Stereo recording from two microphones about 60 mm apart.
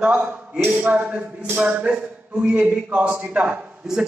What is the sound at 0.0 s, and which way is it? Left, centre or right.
A man's voice, right.